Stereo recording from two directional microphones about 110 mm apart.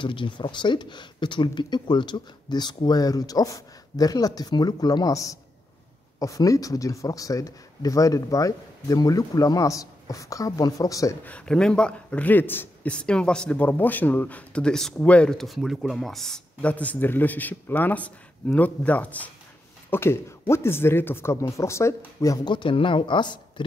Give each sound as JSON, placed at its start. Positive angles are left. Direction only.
{"t": 0.0, "sound": "speech", "side_deg": 50}
{"t": 11.2, "sound": "a man's voice", "side_deg": 10}
{"t": 22.5, "sound": "speech", "side_deg": 50}